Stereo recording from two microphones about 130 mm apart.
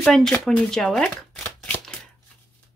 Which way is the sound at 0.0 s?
5° left (ahead or behind).